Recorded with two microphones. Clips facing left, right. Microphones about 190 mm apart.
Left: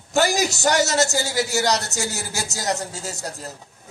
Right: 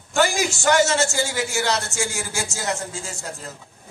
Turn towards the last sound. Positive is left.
turn(degrees=40)  # may be behind; listen again after turning